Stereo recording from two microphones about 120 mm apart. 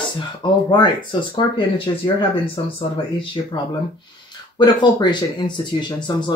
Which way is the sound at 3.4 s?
45° left (ahead or behind).